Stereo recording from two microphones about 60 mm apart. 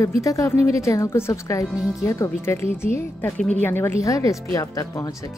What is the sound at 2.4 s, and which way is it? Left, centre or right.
A woman's voice, left.